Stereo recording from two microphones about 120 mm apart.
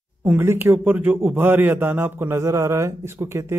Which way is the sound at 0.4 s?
20° right (ahead or behind).